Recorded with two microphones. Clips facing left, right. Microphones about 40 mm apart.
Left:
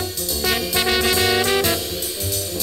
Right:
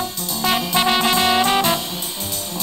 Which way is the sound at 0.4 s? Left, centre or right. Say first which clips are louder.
Right 3 dB; centre.